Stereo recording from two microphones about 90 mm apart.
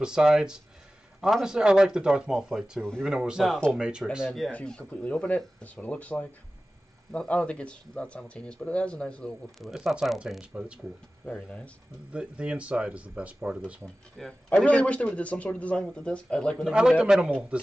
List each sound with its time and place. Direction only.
0.0 s speech: 10° right (ahead or behind)
4.5 s speech: 15° left (ahead or behind)
9.6 s speech: centre (ahead or behind)
11.2 s speech: 10° left (ahead or behind)
12.1 s speech: 10° right (ahead or behind)
14.2 s speech: 5° left (ahead or behind)
14.5 s speech: 15° left (ahead or behind)
16.6 s speech: 5° right (ahead or behind)